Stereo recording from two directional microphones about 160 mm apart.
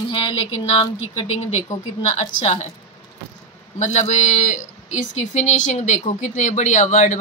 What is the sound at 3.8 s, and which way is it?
Speech, 45° left (ahead or behind).